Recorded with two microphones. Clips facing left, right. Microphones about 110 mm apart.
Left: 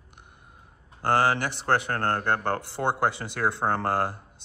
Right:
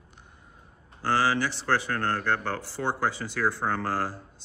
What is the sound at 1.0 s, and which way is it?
Speech, 55° left (ahead or behind).